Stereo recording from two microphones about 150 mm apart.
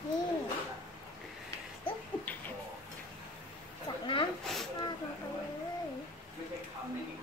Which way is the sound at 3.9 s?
30° left (ahead or behind).